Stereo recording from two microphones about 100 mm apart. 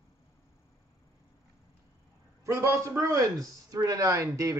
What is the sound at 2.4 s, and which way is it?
Speech, 25° right (ahead or behind).